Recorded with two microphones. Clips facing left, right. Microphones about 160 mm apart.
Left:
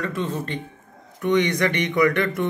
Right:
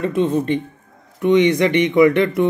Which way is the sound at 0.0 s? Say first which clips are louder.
Right 9 dB; 20° right (ahead or behind).